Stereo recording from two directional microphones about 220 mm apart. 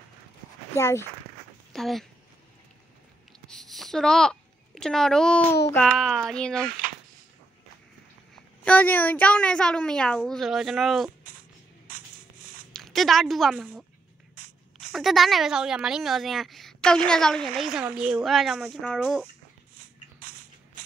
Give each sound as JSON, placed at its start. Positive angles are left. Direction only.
{"t": 0.7, "sound": "speech", "side_deg": 15}
{"t": 1.7, "sound": "speech", "side_deg": 0}
{"t": 3.3, "sound": "a sound", "side_deg": 5}
{"t": 5.7, "sound": "speech", "side_deg": 5}
{"t": 8.6, "sound": "speech", "side_deg": 5}
{"t": 11.9, "sound": "a sound", "side_deg": -40}
{"t": 12.7, "sound": "speech", "side_deg": 0}
{"t": 14.9, "sound": "speech", "side_deg": 0}
{"t": 19.8, "sound": "a sound", "side_deg": -40}